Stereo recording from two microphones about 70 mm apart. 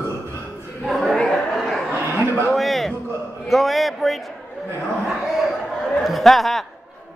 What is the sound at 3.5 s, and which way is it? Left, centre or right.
Speech, centre.